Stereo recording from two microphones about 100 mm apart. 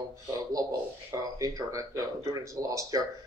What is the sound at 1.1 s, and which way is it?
A man's voice, 35° right (ahead or behind).